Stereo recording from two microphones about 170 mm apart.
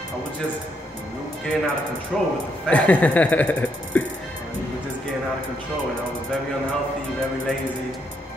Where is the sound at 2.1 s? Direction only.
Centre (ahead or behind).